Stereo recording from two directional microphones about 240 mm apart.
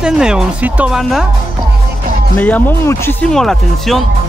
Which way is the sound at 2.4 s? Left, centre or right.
Centre.